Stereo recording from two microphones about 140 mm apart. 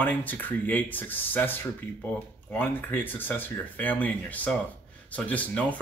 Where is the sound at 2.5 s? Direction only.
15° left (ahead or behind).